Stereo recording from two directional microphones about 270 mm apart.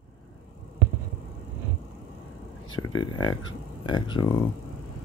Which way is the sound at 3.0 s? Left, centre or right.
Centre.